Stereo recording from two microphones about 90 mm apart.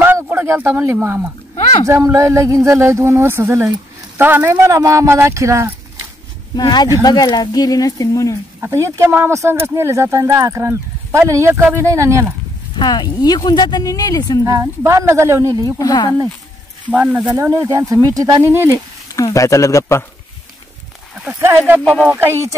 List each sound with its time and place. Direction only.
0.0 s a sound: 25° right (ahead or behind)
1.0 s speech: 25° right (ahead or behind)
4.6 s speech: 35° right (ahead or behind)
6.5 s speech: 50° left (ahead or behind)
8.5 s speech: 30° right (ahead or behind)
12.7 s speech: 50° left (ahead or behind)
14.4 s speech: 35° right (ahead or behind)
15.8 s speech: 50° left (ahead or behind)
16.9 s speech: 15° right (ahead or behind)
17.4 s speech: 35° right (ahead or behind)
18.5 s speech: 25° right (ahead or behind)
19.1 s speech: 40° left (ahead or behind)
21.3 s speech: 25° right (ahead or behind)